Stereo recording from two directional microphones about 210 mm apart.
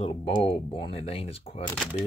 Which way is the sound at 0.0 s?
25° left (ahead or behind).